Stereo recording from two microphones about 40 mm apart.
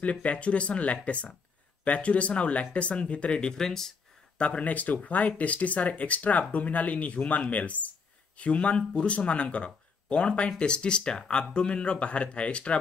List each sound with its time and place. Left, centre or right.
0.0 s speech: left; by 3.9 s centre
4.4 s speech: left